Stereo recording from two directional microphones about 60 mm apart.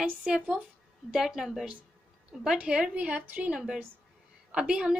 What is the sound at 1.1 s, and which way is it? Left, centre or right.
Speech, centre.